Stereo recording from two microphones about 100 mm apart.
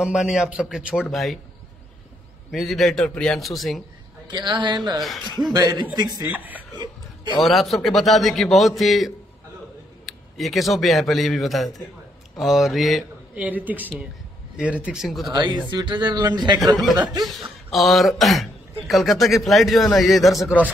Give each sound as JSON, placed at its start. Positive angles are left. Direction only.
{"t": 0.0, "sound": "a man's voice", "side_deg": -10}
{"t": 2.5, "sound": "a man's voice", "side_deg": 0}
{"t": 4.3, "sound": "a man's voice", "side_deg": -45}
{"t": 6.2, "sound": "a man's voice", "side_deg": -15}
{"t": 7.3, "sound": "a man's voice", "side_deg": 0}
{"t": 13.3, "sound": "a man's voice", "side_deg": -15}
{"t": 15.2, "sound": "speech", "side_deg": -45}
{"t": 17.2, "sound": "a man's voice", "side_deg": 0}